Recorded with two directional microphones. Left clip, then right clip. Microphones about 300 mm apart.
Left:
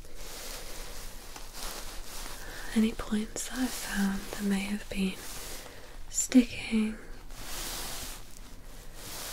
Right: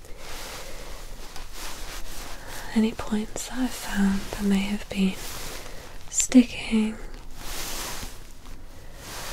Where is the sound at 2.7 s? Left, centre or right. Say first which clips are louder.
Right 4 dB; right.